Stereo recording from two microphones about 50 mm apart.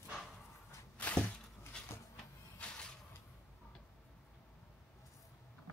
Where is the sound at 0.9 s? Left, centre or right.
Left.